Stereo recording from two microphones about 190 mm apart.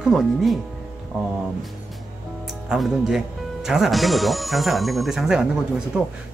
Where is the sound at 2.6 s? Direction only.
Centre (ahead or behind).